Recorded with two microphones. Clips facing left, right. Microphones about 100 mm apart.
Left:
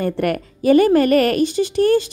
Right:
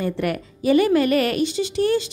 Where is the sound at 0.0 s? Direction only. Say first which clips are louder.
Left 4 dB; 50° left (ahead or behind).